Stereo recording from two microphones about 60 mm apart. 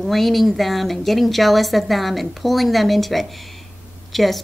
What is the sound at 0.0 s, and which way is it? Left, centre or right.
Speech, centre.